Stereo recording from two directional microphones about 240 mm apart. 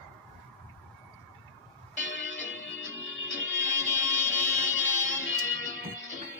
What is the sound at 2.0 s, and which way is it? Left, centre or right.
Music, left.